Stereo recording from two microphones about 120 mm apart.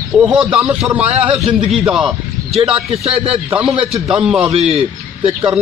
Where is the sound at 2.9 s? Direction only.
55° right (ahead or behind).